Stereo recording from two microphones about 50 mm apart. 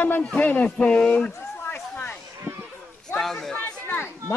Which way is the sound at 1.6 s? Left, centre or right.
Left.